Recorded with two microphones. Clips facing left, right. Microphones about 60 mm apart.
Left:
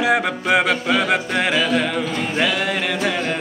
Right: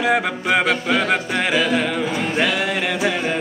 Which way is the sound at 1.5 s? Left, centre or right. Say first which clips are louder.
Right 2 dB; centre.